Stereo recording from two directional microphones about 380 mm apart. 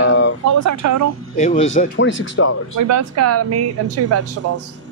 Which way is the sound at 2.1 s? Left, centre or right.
Left.